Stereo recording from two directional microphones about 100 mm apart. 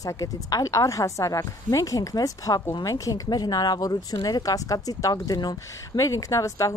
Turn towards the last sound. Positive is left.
turn(degrees=35)  # may be behind; listen again after turning